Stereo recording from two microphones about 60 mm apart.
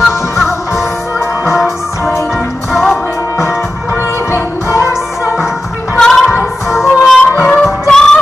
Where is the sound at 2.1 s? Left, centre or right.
Left.